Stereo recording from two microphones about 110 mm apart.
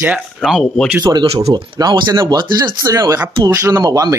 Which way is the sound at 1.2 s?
65° right (ahead or behind).